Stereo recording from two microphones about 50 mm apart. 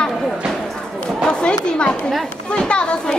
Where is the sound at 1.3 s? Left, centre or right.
Centre.